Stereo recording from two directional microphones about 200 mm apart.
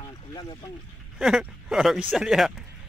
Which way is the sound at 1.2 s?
5° right (ahead or behind).